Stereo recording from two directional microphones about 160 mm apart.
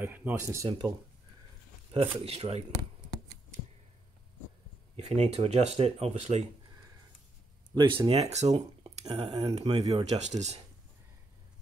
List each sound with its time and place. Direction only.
0.0 s speech: 10° right (ahead or behind)
0.7 s speech: 30° right (ahead or behind)
4.9 s speech: 40° right (ahead or behind)
7.7 s speech: 25° right (ahead or behind); by 10.3 s 45° right (ahead or behind)